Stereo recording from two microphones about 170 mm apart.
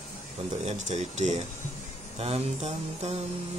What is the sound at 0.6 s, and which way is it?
Speech, 40° right (ahead or behind).